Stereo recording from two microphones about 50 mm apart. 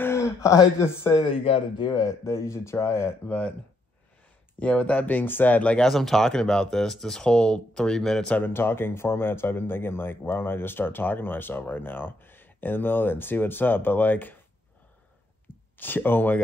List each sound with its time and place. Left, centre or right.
0.0 s speech: left
4.6 s speech: left
5.8 s speech: centre
8.4 s speech: left
15.5 s a sound: left
15.8 s speech: left